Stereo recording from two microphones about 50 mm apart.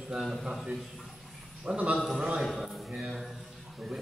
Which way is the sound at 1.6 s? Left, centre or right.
Right.